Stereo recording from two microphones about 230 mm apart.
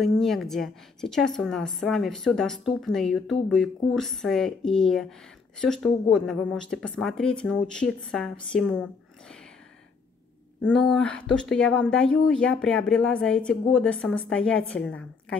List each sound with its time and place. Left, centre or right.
0.0 s a woman's voice: centre
10.6 s a woman's voice: centre